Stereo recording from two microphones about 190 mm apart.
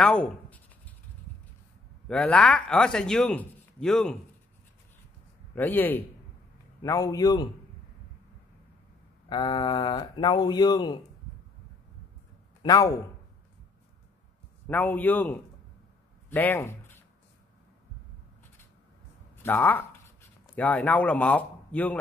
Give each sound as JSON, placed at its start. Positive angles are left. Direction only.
{"t": 0.0, "sound": "writing", "side_deg": 5}
{"t": 2.0, "sound": "speech", "side_deg": 5}
{"t": 5.5, "sound": "a man's voice", "side_deg": 10}
{"t": 9.3, "sound": "speech", "side_deg": 25}
{"t": 12.6, "sound": "a man's voice", "side_deg": 20}
{"t": 14.7, "sound": "a man's voice", "side_deg": 10}
{"t": 16.3, "sound": "a sound", "side_deg": 10}
{"t": 19.4, "sound": "speech", "side_deg": 10}